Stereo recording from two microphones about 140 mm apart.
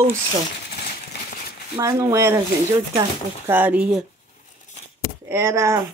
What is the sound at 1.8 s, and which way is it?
Speech, 20° right (ahead or behind).